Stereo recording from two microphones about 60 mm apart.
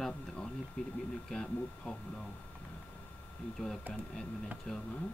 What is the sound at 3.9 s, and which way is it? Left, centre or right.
Speech, centre.